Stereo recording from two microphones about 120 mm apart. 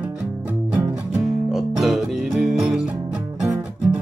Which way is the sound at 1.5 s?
Centre (ahead or behind).